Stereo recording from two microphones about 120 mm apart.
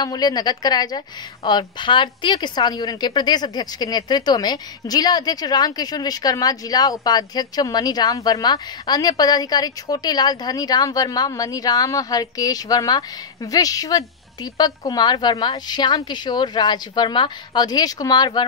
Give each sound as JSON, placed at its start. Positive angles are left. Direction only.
{"t": 0.0, "sound": "a woman's voice", "side_deg": 35}